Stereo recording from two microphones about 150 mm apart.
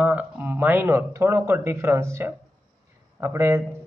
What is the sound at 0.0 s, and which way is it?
A man's voice, 10° right (ahead or behind).